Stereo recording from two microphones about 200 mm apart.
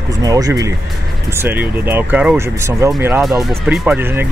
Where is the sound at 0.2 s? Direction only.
15° right (ahead or behind).